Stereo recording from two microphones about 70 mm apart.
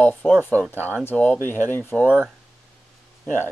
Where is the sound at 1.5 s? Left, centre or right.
Left.